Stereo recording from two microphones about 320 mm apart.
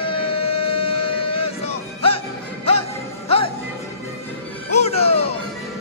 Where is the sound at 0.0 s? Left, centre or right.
Centre.